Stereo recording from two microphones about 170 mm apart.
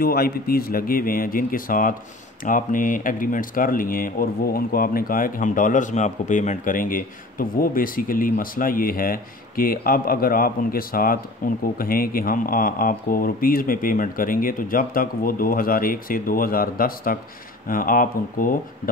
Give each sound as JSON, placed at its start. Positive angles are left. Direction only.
{"t": 0.0, "sound": "speech", "side_deg": 60}